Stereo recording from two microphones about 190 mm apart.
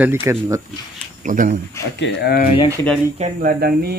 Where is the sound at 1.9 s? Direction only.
60° left (ahead or behind).